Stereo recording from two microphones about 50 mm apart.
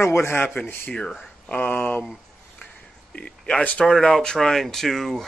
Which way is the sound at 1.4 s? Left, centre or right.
Left.